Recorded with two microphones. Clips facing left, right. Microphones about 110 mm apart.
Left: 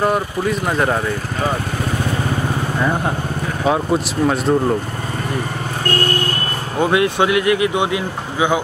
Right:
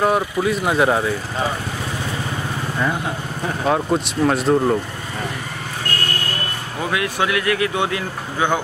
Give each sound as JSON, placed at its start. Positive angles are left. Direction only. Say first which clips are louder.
{"t": 0.0, "sound": "speech", "louder": "even", "side_deg": 0}
{"t": 3.6, "sound": "speech", "louder": "left 2 dB", "side_deg": 5}
{"t": 6.8, "sound": "speech", "louder": "left 6 dB", "side_deg": 25}